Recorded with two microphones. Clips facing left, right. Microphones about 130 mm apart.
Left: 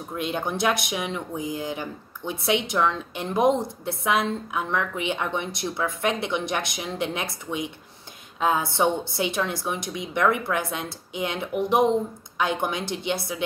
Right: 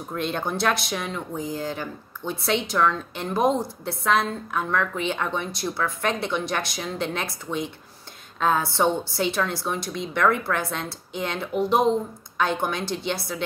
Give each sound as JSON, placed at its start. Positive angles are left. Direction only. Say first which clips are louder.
{"t": 0.1, "sound": "speech", "louder": "right 1 dB", "side_deg": 15}